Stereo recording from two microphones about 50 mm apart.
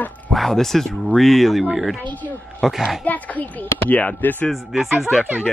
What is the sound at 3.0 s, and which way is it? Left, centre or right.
A child's voice, left.